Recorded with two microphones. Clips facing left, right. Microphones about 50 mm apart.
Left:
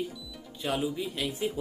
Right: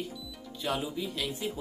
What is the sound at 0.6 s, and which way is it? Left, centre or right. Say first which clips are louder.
Speech: left 2 dB; centre.